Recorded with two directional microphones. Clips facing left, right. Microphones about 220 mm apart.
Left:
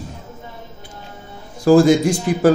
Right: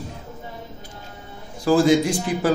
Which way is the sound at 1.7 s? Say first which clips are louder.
Left 6 dB; 45° left (ahead or behind).